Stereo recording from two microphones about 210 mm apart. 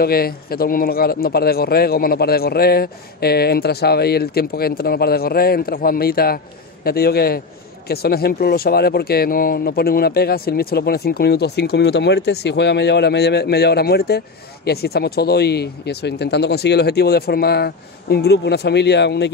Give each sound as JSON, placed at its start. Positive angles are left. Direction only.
{"t": 0.0, "sound": "speech", "side_deg": 45}